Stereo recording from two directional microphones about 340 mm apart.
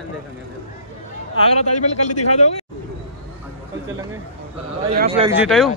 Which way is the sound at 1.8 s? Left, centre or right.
Left.